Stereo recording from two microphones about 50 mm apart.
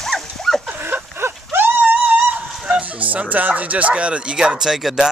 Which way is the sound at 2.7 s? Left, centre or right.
Right.